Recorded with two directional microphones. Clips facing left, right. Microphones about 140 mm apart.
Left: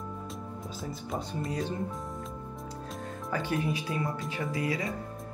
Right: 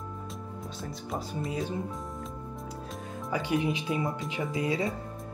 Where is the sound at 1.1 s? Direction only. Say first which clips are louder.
Right 1 dB; 5° right (ahead or behind).